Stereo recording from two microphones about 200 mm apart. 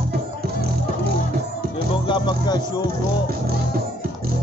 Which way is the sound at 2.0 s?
20° left (ahead or behind).